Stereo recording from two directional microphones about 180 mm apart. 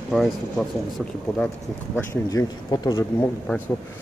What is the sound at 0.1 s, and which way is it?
Speech, centre (ahead or behind).